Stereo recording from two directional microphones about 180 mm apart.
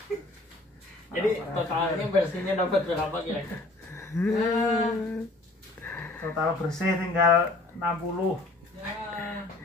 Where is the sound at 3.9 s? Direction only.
15° left (ahead or behind).